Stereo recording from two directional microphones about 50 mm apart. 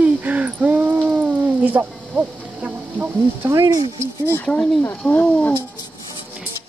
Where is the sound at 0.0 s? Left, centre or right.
Right.